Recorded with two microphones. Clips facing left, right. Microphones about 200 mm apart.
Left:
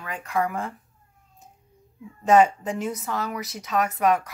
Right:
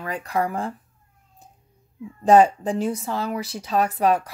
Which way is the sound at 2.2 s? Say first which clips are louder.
Right 3 dB; 35° right (ahead or behind).